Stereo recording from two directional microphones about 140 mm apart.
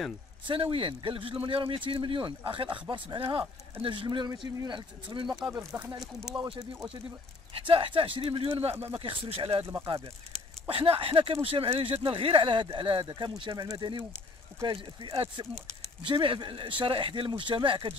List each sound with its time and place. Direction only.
0.5 s speech: 40° right (ahead or behind)
5.6 s speech: 5° right (ahead or behind)
7.5 s speech: 40° right (ahead or behind)
10.7 s speech: 40° right (ahead or behind)